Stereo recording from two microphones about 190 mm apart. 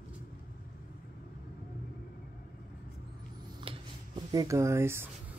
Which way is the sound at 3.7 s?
30° right (ahead or behind).